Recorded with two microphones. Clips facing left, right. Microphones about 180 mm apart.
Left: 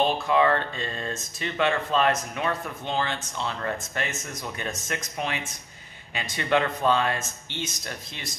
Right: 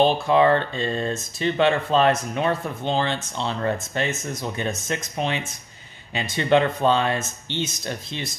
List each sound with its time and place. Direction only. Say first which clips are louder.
0.0 s speech: right 5 dB; 30° right (ahead or behind)